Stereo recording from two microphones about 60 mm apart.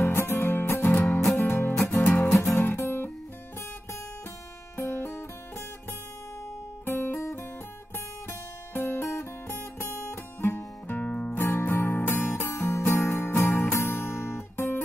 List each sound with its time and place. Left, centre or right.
0.0 s music: left
1.2 s music: centre
1.5 s music: left
1.9 s music: left
2.6 s guitar: left
4.7 s music: left
6.8 s guitar: left
8.3 s music: left
11.1 s music: left
11.3 s music: left